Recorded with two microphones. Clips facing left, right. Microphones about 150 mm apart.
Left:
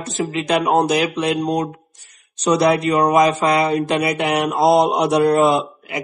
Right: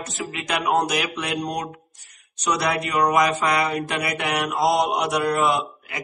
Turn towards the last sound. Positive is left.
turn(degrees=30)  # may be behind; listen again after turning